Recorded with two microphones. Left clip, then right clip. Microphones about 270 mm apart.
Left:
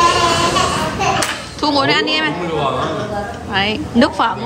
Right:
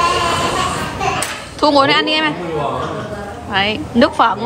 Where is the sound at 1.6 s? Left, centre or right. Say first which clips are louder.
Right 3 dB; centre.